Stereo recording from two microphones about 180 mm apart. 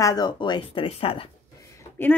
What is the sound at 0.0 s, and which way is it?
Speech, 20° left (ahead or behind).